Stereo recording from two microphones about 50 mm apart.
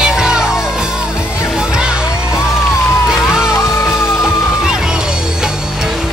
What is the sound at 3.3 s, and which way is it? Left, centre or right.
Music, centre.